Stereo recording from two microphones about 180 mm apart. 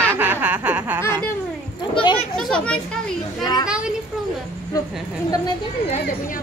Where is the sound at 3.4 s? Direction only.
20° left (ahead or behind).